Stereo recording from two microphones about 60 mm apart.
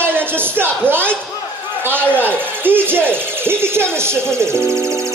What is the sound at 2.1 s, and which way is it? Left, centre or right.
Speech, right.